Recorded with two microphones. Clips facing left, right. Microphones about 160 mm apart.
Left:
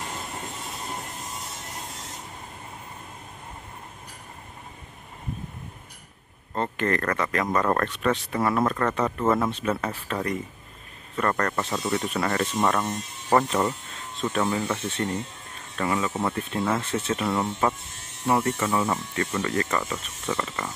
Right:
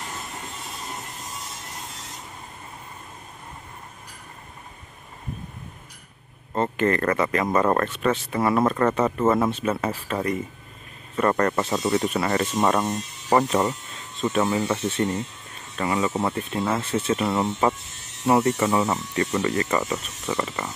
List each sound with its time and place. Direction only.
6.5 s speech: 5° right (ahead or behind)
14.2 s speech: 5° right (ahead or behind)